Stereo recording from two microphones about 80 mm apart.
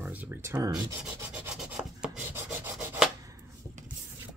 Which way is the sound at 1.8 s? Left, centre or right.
Centre.